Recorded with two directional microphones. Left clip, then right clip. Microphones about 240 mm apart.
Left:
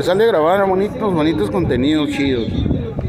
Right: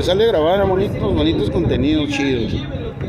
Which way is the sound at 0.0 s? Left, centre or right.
Centre.